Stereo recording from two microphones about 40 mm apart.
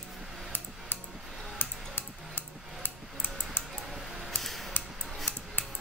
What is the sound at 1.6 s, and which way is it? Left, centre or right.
Music, left.